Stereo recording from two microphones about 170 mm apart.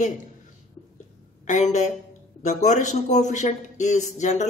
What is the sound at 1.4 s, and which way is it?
Speech, 45° left (ahead or behind).